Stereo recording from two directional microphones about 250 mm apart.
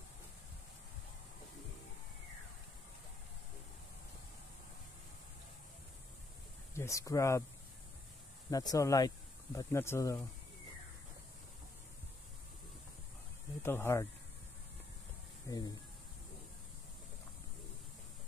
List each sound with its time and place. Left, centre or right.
6.7 s speech: centre
8.5 s speech: centre
13.6 s speech: centre
15.4 s speech: centre